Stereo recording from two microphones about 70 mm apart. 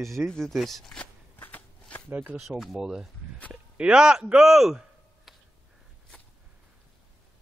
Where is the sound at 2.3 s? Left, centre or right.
Centre.